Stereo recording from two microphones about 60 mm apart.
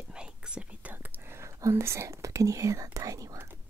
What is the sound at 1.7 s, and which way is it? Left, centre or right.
Speech, right.